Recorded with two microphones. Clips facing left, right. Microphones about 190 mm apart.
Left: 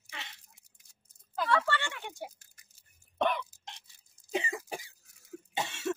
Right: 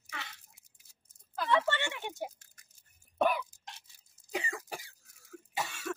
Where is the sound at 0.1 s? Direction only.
25° left (ahead or behind).